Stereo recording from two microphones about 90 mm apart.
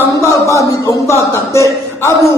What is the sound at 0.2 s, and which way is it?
A man's voice, 35° left (ahead or behind).